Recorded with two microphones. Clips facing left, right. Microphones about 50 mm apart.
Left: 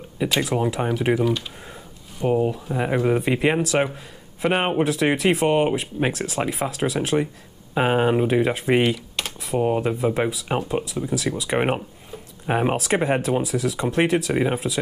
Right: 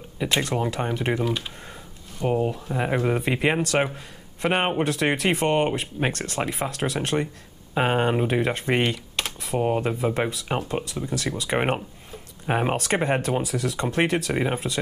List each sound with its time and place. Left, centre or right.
0.4 s speech: centre